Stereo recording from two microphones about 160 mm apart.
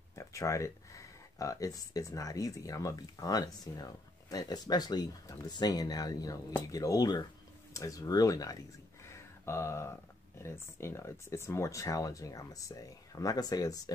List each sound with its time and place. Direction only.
0.1 s speech: 20° left (ahead or behind)